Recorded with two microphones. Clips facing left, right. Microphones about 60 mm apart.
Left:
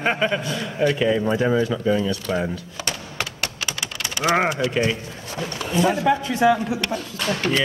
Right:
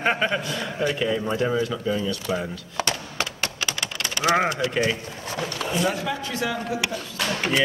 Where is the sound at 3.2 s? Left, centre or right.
Centre.